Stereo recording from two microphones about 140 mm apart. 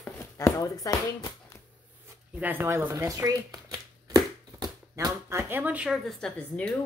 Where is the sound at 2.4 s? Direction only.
15° right (ahead or behind); by 6.8 s 5° left (ahead or behind).